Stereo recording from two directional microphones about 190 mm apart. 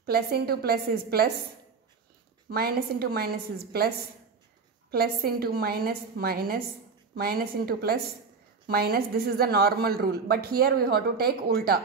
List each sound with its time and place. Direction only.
0.0 s a woman's voice: 55° right (ahead or behind)
2.5 s a woman's voice: 55° right (ahead or behind)